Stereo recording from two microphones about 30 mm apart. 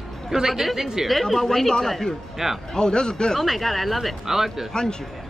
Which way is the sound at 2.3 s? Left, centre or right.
Centre.